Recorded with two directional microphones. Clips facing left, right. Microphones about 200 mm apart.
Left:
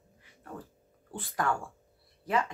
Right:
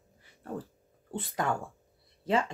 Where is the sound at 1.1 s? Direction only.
20° right (ahead or behind).